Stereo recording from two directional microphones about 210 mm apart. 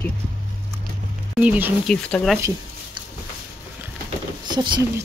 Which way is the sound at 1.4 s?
10° right (ahead or behind).